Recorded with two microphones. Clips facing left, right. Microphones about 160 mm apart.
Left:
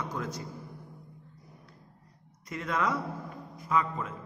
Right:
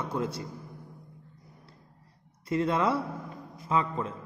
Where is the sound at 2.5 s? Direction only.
30° right (ahead or behind).